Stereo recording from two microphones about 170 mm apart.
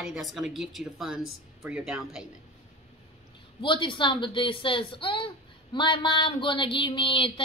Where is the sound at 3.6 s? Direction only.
30° left (ahead or behind).